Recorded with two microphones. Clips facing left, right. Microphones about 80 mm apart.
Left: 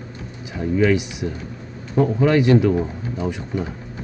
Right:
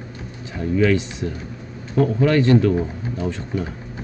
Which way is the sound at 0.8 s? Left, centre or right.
Centre.